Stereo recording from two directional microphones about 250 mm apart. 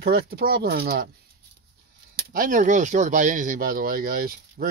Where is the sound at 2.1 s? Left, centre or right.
Right.